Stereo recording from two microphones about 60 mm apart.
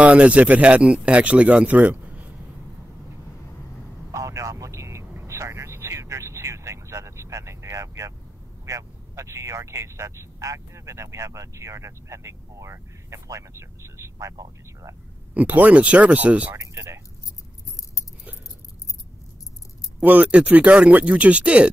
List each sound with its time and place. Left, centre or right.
0.0 s speech: right
4.1 s vehicle: right
8.6 s speech: right
14.1 s speech: right
15.3 s speech: right
16.5 s a sound: right
20.0 s speech: right